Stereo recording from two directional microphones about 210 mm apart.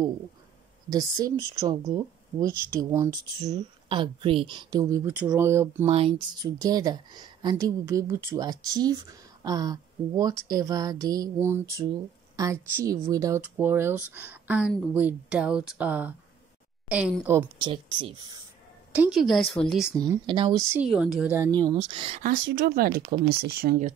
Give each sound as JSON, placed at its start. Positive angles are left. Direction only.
{"t": 0.8, "sound": "speech", "side_deg": -15}
{"t": 5.9, "sound": "speech", "side_deg": -25}
{"t": 17.6, "sound": "speech", "side_deg": -25}
{"t": 18.9, "sound": "speech", "side_deg": 0}
{"t": 20.1, "sound": "speech", "side_deg": -20}
{"t": 20.8, "sound": "speech", "side_deg": 0}
{"t": 21.5, "sound": "speech", "side_deg": -20}
{"t": 22.2, "sound": "speech", "side_deg": -40}